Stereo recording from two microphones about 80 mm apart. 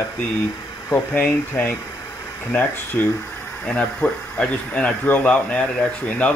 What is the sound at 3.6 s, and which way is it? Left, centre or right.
Speech, centre.